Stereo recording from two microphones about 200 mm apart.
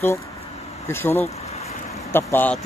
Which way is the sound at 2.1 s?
10° left (ahead or behind).